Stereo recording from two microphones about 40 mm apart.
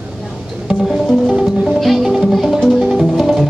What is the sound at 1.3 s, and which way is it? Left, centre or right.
Music, centre.